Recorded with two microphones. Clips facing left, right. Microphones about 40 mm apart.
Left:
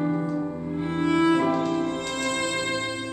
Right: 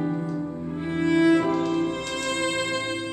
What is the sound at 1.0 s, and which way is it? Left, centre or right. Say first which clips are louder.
Music: right 2 dB; centre.